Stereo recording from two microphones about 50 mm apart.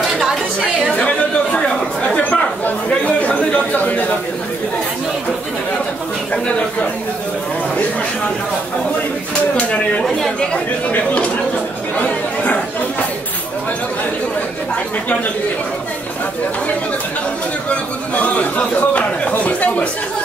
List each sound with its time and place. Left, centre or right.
0.9 s chatter: left
6.3 s speech: centre
9.6 s speech: left
17.6 s speech: left